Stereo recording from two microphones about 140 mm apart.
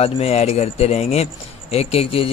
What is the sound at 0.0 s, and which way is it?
Speech, 45° left (ahead or behind).